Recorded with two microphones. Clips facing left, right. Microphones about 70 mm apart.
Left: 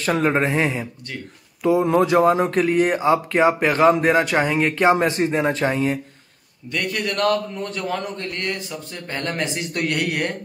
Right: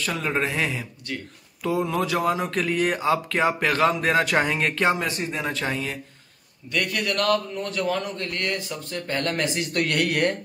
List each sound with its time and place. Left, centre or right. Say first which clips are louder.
0.0 s speech: left 6 dB; left
4.2 s speech: left 3 dB; centre
4.9 s speech: left 8 dB; left; by 10.3 s centre